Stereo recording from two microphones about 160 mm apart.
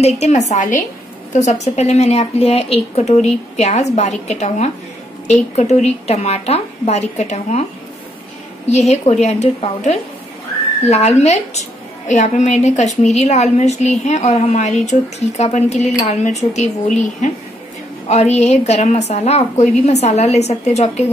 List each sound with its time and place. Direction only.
0.0 s a woman's voice: 45° left (ahead or behind)
8.6 s a woman's voice: 45° left (ahead or behind)